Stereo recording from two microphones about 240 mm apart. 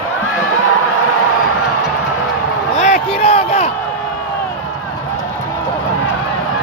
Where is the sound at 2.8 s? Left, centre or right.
Left.